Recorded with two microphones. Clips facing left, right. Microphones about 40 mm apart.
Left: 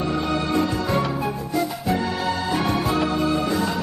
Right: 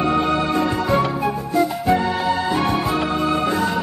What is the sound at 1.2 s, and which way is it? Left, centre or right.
Music, right.